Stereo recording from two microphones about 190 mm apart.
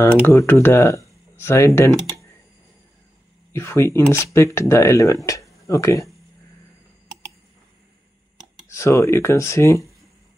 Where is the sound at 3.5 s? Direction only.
15° left (ahead or behind).